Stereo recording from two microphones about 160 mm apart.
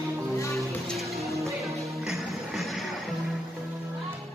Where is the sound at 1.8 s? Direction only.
Centre (ahead or behind).